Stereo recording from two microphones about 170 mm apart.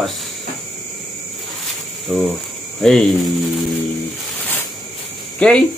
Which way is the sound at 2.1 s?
Centre (ahead or behind).